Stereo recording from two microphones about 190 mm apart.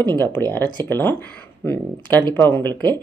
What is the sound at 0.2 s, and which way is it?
Speech, 10° left (ahead or behind).